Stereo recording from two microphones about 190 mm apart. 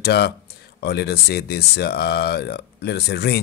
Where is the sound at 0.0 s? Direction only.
60° left (ahead or behind).